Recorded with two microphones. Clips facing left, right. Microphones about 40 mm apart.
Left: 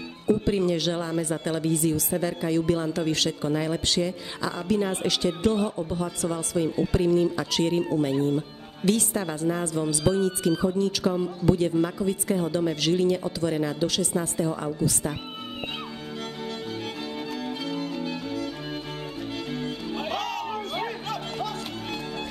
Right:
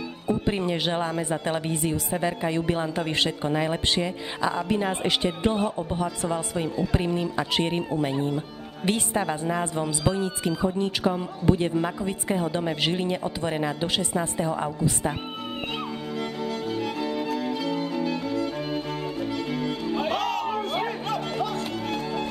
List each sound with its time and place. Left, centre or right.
0.3 s speech: right
17.7 s violin: right
20.0 s music: centre